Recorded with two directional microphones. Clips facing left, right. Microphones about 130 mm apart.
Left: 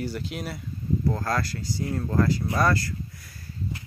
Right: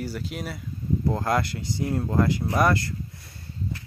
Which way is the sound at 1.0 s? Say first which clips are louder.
Right 4 dB; 20° right (ahead or behind).